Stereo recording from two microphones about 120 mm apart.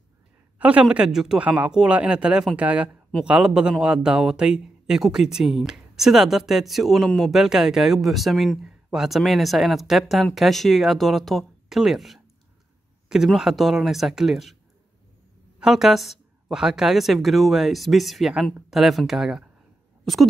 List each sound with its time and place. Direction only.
0.6 s a man's voice: 10° right (ahead or behind)
15.6 s speech: 5° right (ahead or behind)